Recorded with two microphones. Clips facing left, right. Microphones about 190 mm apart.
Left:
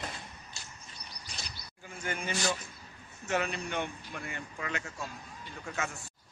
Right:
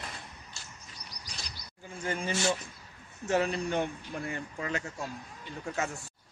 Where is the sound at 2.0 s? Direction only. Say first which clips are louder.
Right 3 dB; 30° right (ahead or behind).